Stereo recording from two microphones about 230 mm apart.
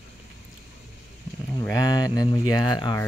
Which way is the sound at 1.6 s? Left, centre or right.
Centre.